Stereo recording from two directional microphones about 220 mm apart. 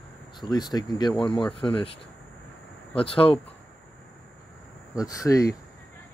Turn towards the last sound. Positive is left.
turn(degrees=15)  # may be behind; listen again after turning